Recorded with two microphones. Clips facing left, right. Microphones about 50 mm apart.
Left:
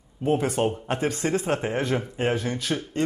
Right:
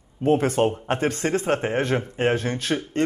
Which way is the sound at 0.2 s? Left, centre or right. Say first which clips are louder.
Right 3 dB; right.